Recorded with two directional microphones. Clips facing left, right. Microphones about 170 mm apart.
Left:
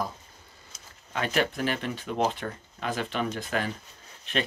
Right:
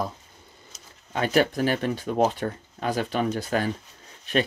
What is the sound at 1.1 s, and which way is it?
Speech, 35° right (ahead or behind).